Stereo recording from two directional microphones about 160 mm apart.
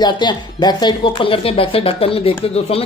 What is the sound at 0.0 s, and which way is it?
Speech, 25° left (ahead or behind).